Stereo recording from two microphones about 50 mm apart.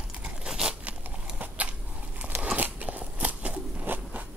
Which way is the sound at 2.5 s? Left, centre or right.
Right.